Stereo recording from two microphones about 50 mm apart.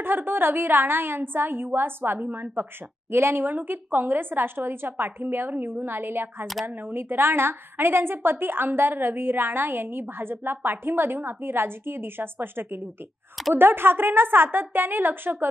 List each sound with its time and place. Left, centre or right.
0.0 s a woman's voice: right